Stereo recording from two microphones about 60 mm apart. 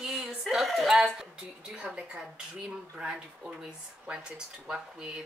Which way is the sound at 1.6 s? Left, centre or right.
Centre.